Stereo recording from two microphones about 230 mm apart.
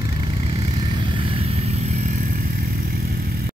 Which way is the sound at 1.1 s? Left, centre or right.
Right.